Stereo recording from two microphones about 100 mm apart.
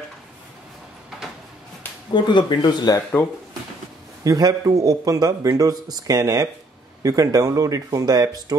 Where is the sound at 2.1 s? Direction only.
50° left (ahead or behind).